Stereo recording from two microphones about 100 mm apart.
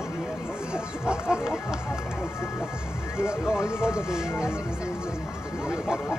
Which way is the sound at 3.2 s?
10° right (ahead or behind).